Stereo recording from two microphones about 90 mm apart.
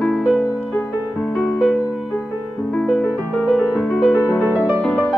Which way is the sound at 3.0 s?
15° left (ahead or behind).